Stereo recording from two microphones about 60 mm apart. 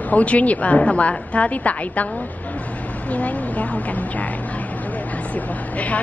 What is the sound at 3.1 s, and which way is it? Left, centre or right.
A woman's voice, left.